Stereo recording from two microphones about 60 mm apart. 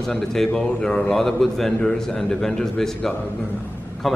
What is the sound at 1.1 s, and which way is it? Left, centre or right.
A man's voice, centre.